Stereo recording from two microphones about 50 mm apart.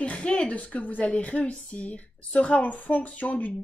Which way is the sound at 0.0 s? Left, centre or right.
Left.